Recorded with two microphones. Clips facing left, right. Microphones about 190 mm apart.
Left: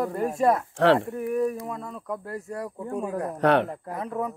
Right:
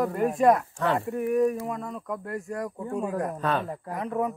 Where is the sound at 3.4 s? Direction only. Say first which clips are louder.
Left 10 dB; 75° left (ahead or behind).